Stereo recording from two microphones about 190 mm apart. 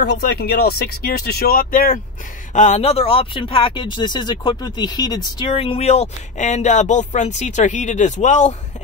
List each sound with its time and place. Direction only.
0.0 s speech: 60° left (ahead or behind); by 8.5 s 40° left (ahead or behind)